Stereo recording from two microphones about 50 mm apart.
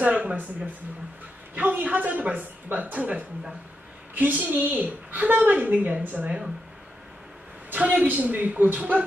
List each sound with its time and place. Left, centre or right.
0.0 s speech: right
1.5 s a woman's voice: right
7.7 s a woman's voice: right